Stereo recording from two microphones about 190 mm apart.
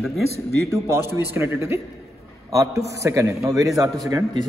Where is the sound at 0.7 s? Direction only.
15° right (ahead or behind).